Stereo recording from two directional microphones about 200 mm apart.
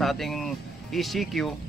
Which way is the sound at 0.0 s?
Centre (ahead or behind).